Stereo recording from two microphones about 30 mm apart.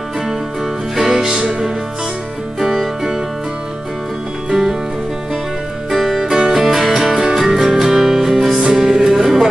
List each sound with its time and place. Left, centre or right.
0.9 s music: centre
1.2 s music: right
5.9 s music: centre